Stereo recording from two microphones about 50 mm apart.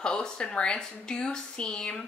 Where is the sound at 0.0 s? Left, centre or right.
Centre.